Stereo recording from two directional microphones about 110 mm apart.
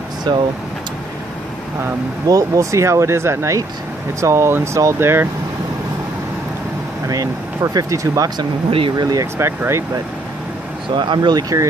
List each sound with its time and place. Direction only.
0.3 s speech: 45° right (ahead or behind)
2.2 s speech: 30° right (ahead or behind)
7.1 s speech: 30° right (ahead or behind)
8.6 s speech: 55° right (ahead or behind)
9.1 s speech: 30° right (ahead or behind)
11.0 s speech: 40° right (ahead or behind)